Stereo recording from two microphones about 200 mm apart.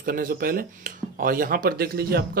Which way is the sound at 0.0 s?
45° right (ahead or behind).